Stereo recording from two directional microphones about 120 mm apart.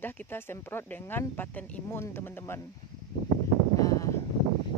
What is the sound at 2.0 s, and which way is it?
Female singing, 20° left (ahead or behind).